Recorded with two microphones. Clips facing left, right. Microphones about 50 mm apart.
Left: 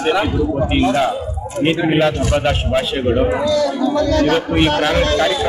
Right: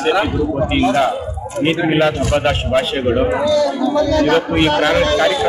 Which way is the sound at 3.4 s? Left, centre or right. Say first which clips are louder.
Right 2 dB; right.